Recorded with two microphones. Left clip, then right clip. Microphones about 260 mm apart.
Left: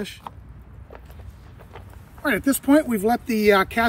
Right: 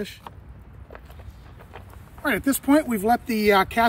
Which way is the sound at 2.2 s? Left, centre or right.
Centre.